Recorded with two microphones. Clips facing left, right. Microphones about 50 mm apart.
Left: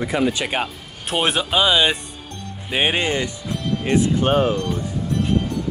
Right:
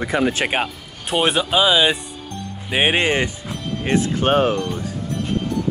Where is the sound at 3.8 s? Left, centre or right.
Right.